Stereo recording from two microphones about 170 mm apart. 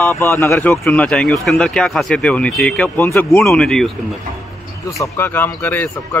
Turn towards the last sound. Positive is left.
turn(degrees=10)  # may be behind; listen again after turning